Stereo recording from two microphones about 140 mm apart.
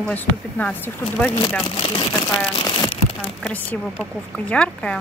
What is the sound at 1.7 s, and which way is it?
Speech, 35° left (ahead or behind).